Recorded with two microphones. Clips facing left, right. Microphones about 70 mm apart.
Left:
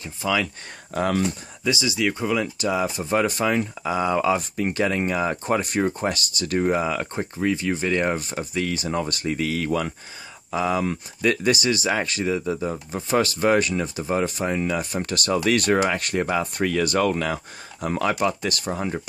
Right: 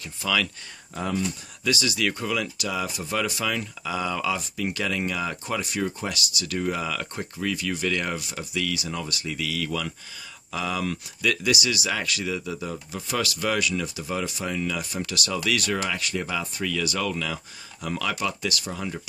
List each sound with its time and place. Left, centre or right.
0.0 s speech: left
0.9 s speech: left
1.6 s speech: left